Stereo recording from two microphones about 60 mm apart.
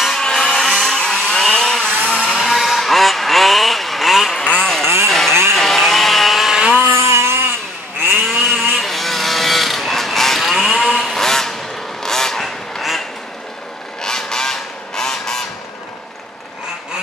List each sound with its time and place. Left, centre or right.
0.2 s a sound: centre
2.3 s vehicle: centre
4.5 s vehicle: centre
5.0 s a sound: centre
5.8 s vehicle: centre
7.0 s a sound: right
8.3 s wood: centre
12.0 s honk: centre
14.0 s honk: centre